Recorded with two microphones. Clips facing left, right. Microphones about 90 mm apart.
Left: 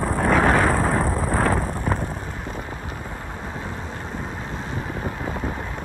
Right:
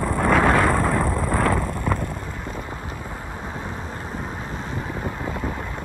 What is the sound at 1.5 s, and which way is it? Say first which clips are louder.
Wind noise: even; 20° left (ahead or behind).